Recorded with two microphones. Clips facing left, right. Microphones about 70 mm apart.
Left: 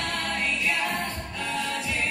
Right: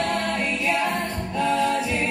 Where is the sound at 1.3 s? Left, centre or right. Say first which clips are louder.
Right 10 dB; right.